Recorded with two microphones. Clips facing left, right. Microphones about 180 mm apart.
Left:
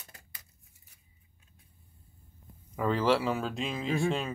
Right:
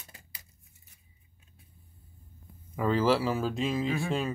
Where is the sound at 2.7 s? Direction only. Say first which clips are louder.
Right 1 dB; centre (ahead or behind).